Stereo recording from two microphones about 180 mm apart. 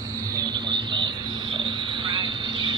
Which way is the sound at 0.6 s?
25° right (ahead or behind).